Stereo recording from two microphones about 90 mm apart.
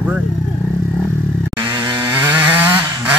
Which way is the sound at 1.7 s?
45° right (ahead or behind).